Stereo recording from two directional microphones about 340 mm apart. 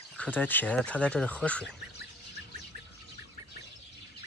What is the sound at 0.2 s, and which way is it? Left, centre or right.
Speech, centre.